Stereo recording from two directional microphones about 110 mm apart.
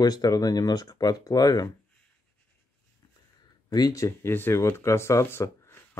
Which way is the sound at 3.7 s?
30° left (ahead or behind).